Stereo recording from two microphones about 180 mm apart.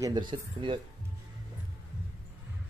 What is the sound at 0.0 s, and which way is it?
Speech, 25° right (ahead or behind).